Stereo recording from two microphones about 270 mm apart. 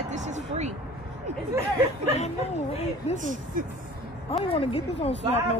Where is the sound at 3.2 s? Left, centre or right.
Right.